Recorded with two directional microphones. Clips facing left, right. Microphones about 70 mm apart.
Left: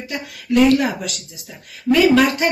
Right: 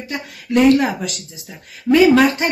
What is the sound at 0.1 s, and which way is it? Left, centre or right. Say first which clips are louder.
Speech: even; right.